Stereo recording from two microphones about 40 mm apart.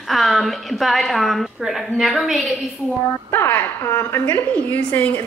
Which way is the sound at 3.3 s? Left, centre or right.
Left.